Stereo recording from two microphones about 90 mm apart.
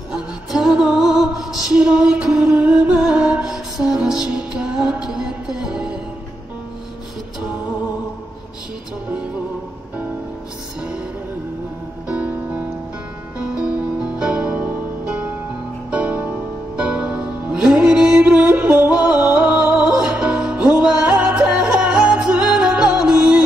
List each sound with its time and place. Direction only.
0.1 s music: 5° right (ahead or behind)
10.8 s music: 10° right (ahead or behind)
12.1 s music: 15° right (ahead or behind)